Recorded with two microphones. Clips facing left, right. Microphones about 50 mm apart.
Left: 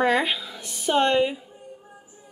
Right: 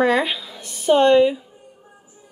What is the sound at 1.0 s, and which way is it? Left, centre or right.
Speech, centre.